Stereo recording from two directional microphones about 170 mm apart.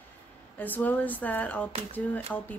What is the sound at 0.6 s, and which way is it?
Speech, 10° left (ahead or behind).